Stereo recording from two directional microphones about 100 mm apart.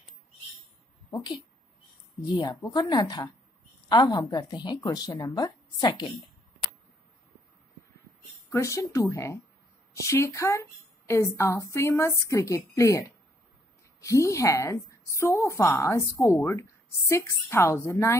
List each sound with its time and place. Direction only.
1.1 s a woman's voice: 40° left (ahead or behind)
8.5 s speech: 30° left (ahead or behind)
14.0 s speech: 30° left (ahead or behind)